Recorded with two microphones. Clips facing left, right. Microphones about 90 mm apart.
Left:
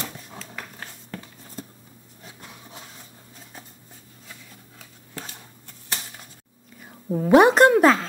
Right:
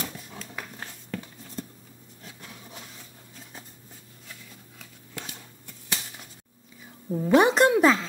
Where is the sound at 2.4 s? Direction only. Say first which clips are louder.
Left 1 dB; 20° left (ahead or behind).